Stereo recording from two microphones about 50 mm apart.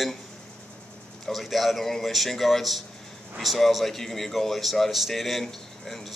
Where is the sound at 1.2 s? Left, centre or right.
Centre.